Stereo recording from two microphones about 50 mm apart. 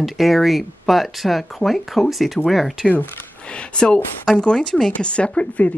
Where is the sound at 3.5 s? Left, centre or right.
Centre.